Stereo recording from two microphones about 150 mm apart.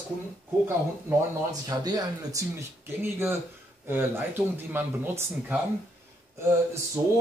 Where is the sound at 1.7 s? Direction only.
25° right (ahead or behind).